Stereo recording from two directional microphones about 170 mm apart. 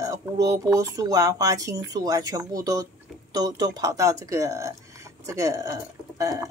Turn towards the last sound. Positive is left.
turn(degrees=-20)  # may be behind; listen again after turning